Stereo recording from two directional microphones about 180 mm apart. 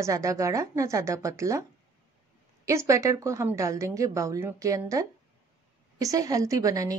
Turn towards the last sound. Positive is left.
turn(degrees=-20)  # may be behind; listen again after turning